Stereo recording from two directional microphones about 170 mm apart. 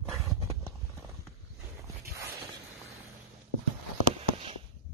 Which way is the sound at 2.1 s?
65° right (ahead or behind).